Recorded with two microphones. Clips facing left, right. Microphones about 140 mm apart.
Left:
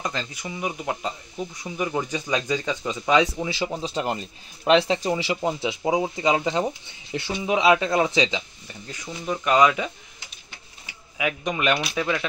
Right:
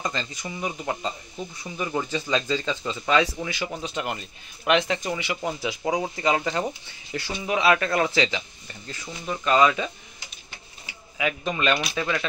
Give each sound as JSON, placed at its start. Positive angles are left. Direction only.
{"t": 0.0, "sound": "speech", "side_deg": 10}
{"t": 3.4, "sound": "a man's voice", "side_deg": 25}
{"t": 11.1, "sound": "speech", "side_deg": 15}